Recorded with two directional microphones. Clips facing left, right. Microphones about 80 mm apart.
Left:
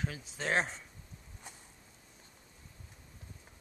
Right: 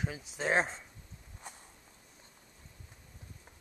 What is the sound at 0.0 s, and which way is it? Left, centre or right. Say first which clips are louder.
Speech: right 2 dB; centre.